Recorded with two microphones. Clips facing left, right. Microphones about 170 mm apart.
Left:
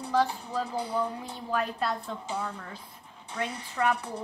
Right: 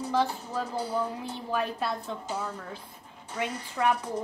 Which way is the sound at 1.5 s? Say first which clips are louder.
Left 1 dB; 10° right (ahead or behind).